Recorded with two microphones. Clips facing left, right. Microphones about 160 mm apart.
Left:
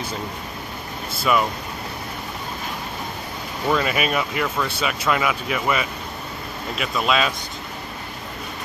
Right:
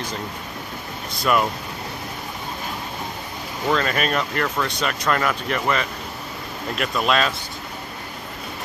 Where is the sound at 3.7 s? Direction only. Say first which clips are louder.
Even; 10° left (ahead or behind).